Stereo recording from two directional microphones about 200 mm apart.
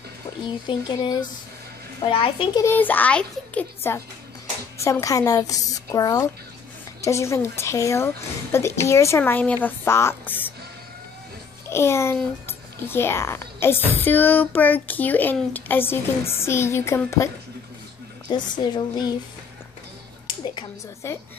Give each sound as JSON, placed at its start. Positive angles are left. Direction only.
{"t": 0.7, "sound": "a woman's voice", "side_deg": 20}
{"t": 2.6, "sound": "speech", "side_deg": 10}
{"t": 11.7, "sound": "speech", "side_deg": 15}
{"t": 18.3, "sound": "a woman's voice", "side_deg": 20}
{"t": 20.5, "sound": "speech", "side_deg": 15}